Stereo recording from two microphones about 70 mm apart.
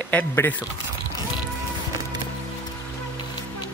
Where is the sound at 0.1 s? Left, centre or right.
Left.